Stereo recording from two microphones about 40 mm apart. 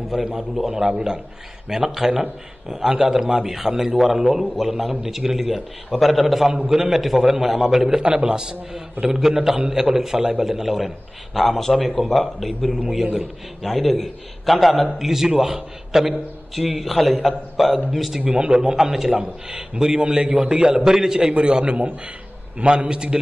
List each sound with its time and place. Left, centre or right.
0.1 s a man's voice: centre
0.8 s a man's voice: centre
1.7 s a man's voice: centre
7.9 s a man's voice: right; by 13.0 s centre
13.0 s a man's voice: centre
13.6 s a man's voice: centre
18.2 s a man's voice: right
18.9 s a man's voice: centre
19.7 s a man's voice: right
21.4 s a man's voice: right